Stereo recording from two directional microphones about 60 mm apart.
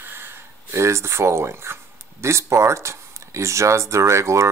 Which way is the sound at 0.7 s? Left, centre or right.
Right.